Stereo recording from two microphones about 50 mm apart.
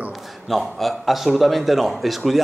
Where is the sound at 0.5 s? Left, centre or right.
Centre.